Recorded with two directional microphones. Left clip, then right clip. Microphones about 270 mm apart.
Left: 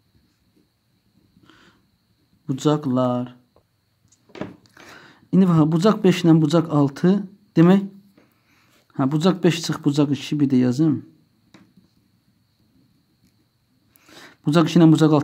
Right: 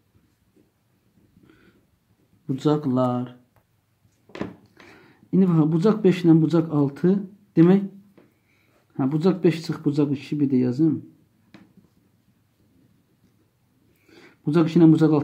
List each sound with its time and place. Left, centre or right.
2.4 s speech: left
4.8 s speech: left
8.9 s speech: left
14.0 s speech: left